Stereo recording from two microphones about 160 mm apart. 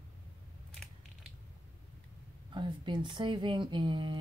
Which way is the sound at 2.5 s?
30° right (ahead or behind).